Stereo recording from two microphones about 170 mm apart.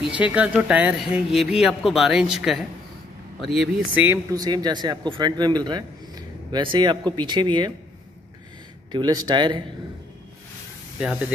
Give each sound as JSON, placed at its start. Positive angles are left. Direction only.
{"t": 0.0, "sound": "speech", "side_deg": -10}
{"t": 4.1, "sound": "a man's voice", "side_deg": -20}
{"t": 8.9, "sound": "a man's voice", "side_deg": -25}
{"t": 11.0, "sound": "speech", "side_deg": -5}